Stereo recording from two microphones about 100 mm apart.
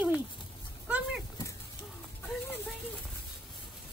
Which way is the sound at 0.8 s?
15° right (ahead or behind).